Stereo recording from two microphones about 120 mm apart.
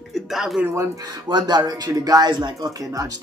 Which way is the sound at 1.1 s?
35° right (ahead or behind).